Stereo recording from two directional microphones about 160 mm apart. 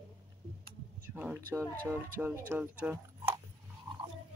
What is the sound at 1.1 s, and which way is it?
Speech, 10° right (ahead or behind).